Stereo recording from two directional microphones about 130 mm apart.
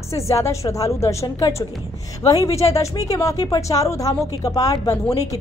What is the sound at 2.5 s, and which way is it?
A woman's voice, 25° left (ahead or behind).